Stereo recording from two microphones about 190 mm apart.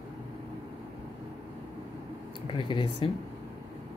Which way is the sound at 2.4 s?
25° left (ahead or behind).